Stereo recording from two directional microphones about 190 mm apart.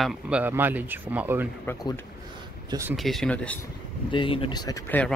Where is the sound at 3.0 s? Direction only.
Centre (ahead or behind).